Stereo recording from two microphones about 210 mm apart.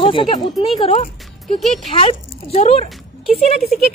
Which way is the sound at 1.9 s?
25° left (ahead or behind).